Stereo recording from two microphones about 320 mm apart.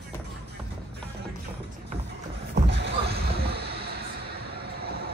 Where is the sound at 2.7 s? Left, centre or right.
Right.